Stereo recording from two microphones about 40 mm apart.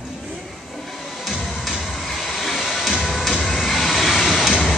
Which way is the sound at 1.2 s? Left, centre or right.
Centre.